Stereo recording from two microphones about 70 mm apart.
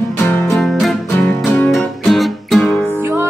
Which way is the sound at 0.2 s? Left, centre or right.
Left.